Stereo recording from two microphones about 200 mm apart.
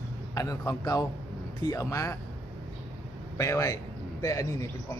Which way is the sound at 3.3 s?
15° left (ahead or behind).